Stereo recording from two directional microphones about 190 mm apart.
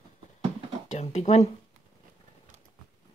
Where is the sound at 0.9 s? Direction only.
35° left (ahead or behind).